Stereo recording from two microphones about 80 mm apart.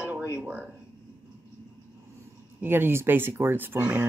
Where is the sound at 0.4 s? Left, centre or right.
Centre.